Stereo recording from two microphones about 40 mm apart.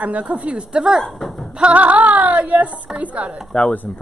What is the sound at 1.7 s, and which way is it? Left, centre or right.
Female singing, right.